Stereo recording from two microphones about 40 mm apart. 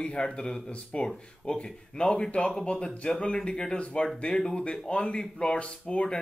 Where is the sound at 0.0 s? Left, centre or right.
Left.